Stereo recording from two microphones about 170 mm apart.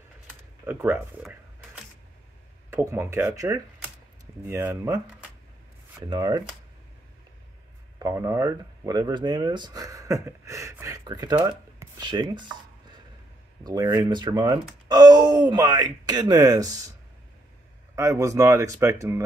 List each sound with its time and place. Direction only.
0.3 s a sound: 10° right (ahead or behind)
2.7 s speech: 15° right (ahead or behind)
8.0 s speech: 20° right (ahead or behind)
17.9 s speech: 20° right (ahead or behind)